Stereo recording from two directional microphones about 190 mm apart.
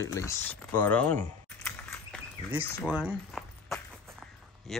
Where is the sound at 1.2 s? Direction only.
10° left (ahead or behind).